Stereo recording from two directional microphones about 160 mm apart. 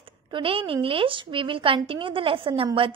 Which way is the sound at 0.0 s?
35° right (ahead or behind).